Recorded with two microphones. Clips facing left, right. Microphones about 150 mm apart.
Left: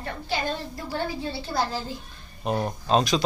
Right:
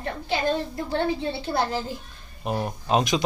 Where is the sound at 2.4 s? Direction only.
5° right (ahead or behind).